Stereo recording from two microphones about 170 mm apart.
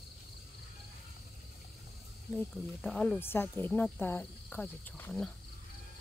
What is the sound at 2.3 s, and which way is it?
Speech, 5° left (ahead or behind).